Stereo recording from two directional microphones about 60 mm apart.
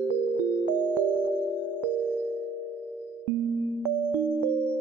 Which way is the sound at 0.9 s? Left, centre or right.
Right.